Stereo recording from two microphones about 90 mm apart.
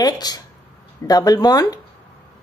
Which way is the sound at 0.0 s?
45° left (ahead or behind).